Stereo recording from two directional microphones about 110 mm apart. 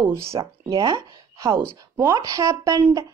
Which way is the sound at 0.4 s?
45° right (ahead or behind).